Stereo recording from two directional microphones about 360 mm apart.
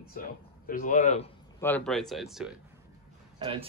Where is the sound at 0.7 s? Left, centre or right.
Left.